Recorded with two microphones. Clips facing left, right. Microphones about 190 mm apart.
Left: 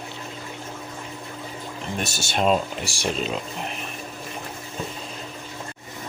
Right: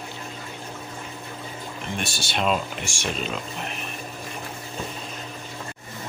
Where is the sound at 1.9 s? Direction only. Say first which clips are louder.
Left 2 dB; 45° left (ahead or behind).